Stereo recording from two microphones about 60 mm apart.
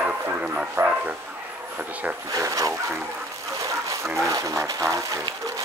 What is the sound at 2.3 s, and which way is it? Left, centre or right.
Speech, right.